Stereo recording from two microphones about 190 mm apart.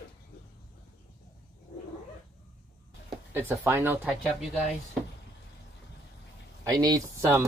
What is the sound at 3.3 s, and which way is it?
Speech, 10° right (ahead or behind).